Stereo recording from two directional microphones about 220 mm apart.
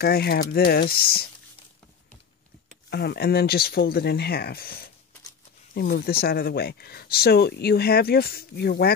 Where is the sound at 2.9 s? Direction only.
45° left (ahead or behind).